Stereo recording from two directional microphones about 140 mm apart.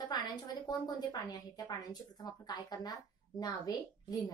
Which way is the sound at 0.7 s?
30° left (ahead or behind).